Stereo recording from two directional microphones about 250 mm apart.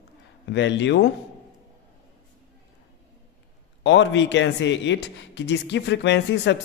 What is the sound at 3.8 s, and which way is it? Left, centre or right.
A man's voice, left.